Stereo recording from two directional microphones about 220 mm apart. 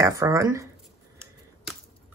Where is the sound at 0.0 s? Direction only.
15° right (ahead or behind).